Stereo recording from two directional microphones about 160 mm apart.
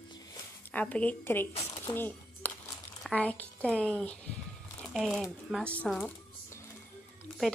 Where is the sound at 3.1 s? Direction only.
10° left (ahead or behind).